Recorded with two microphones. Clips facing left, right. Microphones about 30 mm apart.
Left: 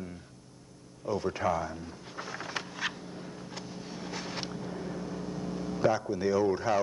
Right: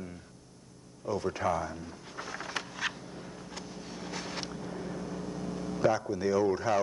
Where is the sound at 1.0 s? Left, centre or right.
Centre.